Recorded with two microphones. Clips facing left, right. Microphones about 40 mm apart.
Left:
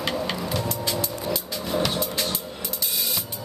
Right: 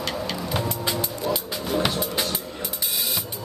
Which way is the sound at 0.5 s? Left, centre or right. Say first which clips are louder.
Right 1 dB; right.